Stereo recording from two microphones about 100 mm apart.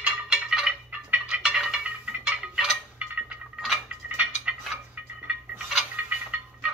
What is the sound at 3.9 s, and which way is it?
Dishes, 10° right (ahead or behind).